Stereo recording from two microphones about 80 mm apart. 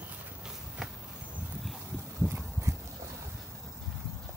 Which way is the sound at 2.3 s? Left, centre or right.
Right.